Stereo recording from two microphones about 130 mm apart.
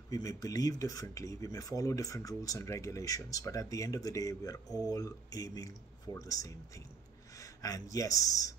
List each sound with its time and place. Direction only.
0.1 s speech: 25° left (ahead or behind)
7.3 s a sound: 25° left (ahead or behind)
7.9 s speech: 25° left (ahead or behind)